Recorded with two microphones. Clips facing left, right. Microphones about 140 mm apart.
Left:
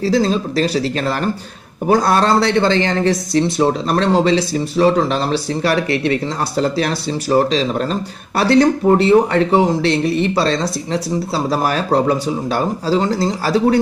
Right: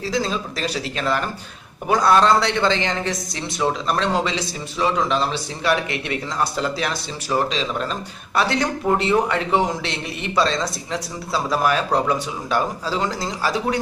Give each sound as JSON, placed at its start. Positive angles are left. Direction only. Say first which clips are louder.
{"t": 0.0, "sound": "speech", "louder": "left 8 dB", "side_deg": 35}